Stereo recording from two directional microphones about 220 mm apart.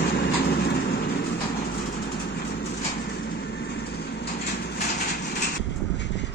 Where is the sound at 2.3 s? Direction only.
50° left (ahead or behind).